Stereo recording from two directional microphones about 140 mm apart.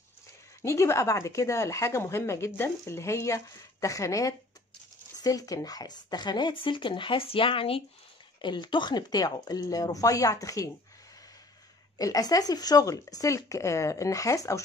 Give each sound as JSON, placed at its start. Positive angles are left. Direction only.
{"t": 0.6, "sound": "speech", "side_deg": 20}
{"t": 12.0, "sound": "speech", "side_deg": 25}